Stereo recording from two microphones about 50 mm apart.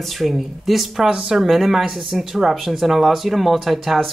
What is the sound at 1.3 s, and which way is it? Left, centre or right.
Speech, centre.